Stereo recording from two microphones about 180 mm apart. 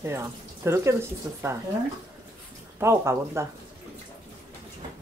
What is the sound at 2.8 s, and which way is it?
Speech, 15° right (ahead or behind).